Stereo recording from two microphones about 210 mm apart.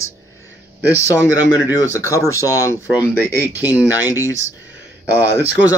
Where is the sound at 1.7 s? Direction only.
15° left (ahead or behind).